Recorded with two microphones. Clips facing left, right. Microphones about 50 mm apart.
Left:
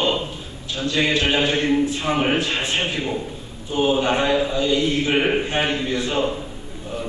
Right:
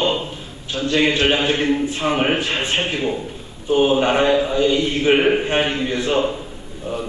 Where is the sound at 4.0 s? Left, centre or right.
Right.